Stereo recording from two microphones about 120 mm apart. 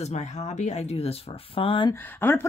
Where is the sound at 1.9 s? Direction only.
15° left (ahead or behind).